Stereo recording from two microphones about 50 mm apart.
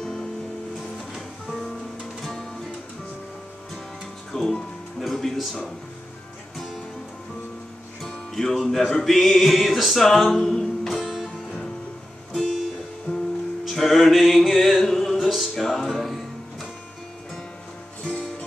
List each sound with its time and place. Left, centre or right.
0.0 s music: centre
0.9 s music: centre
4.3 s music: centre
8.4 s speech: centre
8.9 s music: centre
12.4 s music: centre
13.1 s music: left
13.7 s music: centre